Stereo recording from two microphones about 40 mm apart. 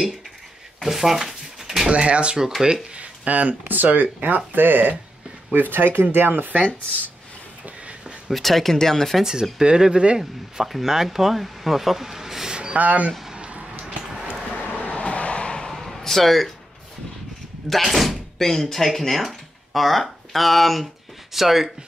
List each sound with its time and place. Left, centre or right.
0.8 s drawer open or close: centre
1.9 s speech: right
3.0 s speech: right
8.3 s speech: centre
9.2 s speech: centre
10.6 s speech: centre
12.7 s speech: right
13.3 s a sound: right
14.7 s vehicle: left
15.7 s a sound: centre
17.6 s speech: centre